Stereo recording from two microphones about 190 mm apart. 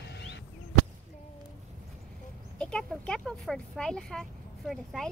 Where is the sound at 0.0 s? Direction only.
65° left (ahead or behind).